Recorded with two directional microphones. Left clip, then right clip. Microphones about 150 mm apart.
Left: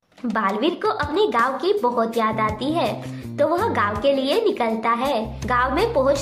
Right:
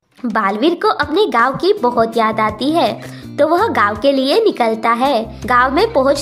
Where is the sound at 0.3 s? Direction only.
40° right (ahead or behind).